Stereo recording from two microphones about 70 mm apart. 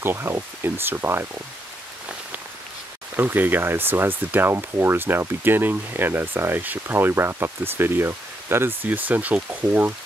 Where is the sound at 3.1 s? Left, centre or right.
Right.